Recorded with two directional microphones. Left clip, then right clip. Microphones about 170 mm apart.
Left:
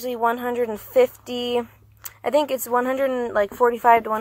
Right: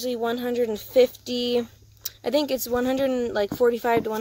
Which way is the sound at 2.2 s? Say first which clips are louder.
Left 3 dB; 40° right (ahead or behind).